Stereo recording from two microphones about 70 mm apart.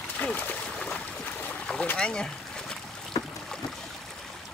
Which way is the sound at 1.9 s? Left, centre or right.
Centre.